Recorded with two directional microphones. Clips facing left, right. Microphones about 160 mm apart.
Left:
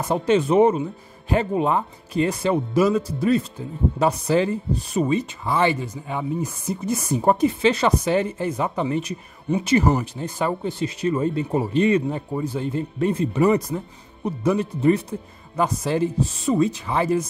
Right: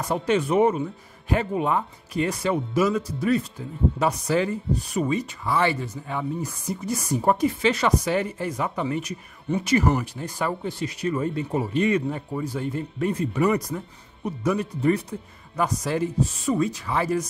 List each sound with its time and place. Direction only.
0.0 s speech: 25° left (ahead or behind)